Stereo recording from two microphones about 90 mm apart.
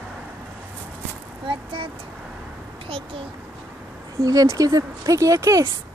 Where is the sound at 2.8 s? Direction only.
90° right.